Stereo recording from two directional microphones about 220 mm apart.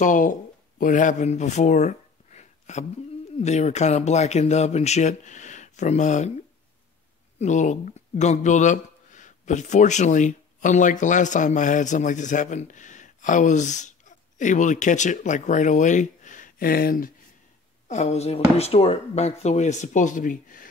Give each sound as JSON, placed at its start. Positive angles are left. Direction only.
{"t": 0.0, "sound": "speech", "side_deg": 35}
{"t": 7.3, "sound": "speech", "side_deg": 35}